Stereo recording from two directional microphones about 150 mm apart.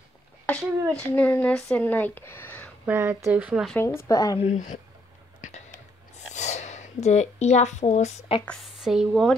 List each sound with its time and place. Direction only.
0.5 s speech: 10° left (ahead or behind)
2.8 s speech: 15° right (ahead or behind)
3.7 s speech: 15° left (ahead or behind)
4.4 s speech: 50° left (ahead or behind)
6.3 s speech: 50° left (ahead or behind)
8.5 s speech: centre (ahead or behind)